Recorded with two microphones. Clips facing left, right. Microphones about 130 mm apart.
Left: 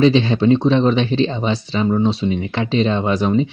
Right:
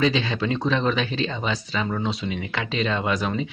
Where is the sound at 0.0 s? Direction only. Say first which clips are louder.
Left 9 dB; 30° left (ahead or behind).